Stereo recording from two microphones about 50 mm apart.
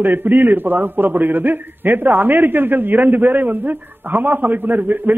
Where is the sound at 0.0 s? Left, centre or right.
Right.